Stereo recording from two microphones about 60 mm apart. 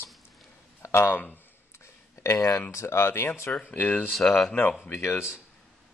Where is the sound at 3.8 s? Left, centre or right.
Left.